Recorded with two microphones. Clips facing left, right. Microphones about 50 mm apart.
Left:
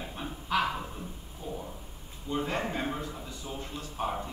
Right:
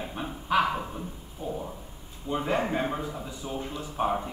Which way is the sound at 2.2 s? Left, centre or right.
Centre.